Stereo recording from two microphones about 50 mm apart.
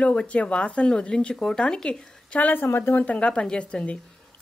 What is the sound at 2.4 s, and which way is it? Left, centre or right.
Speech, left.